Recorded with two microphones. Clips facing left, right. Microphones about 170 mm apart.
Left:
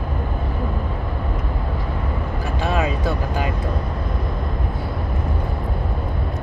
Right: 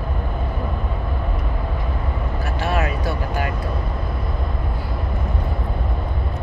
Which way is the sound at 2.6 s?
20° left (ahead or behind).